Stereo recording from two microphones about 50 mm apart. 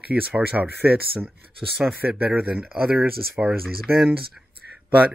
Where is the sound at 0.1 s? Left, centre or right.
Right.